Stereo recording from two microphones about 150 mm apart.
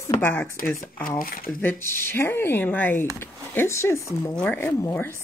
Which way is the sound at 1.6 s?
15° left (ahead or behind).